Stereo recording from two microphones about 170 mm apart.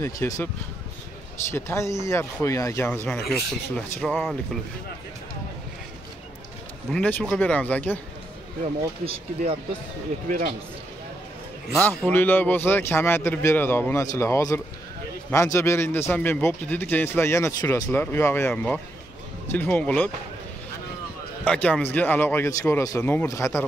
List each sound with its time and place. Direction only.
0.0 s a man's voice: 15° left (ahead or behind)
1.5 s a man's voice: 15° left (ahead or behind)
2.9 s a man's voice: 5° left (ahead or behind)
6.9 s a man's voice: 10° left (ahead or behind)
9.0 s speech: 35° right (ahead or behind)
10.2 s a man's voice: 55° right (ahead or behind)
11.7 s a man's voice: 5° left (ahead or behind)
21.5 s a man's voice: 5° left (ahead or behind)